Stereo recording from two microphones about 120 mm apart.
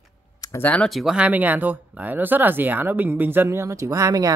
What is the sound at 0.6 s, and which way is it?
Speech, 10° left (ahead or behind).